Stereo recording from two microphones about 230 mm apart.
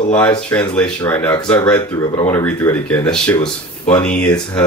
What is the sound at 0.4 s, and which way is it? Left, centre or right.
Speech, centre.